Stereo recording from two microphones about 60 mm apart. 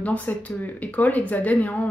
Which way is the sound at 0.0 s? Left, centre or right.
Left.